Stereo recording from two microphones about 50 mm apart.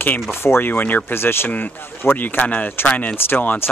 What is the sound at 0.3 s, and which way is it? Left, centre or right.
Speech, left.